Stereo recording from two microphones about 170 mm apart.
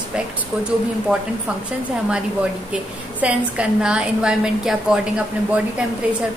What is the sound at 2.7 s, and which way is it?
A woman's voice, 5° right (ahead or behind).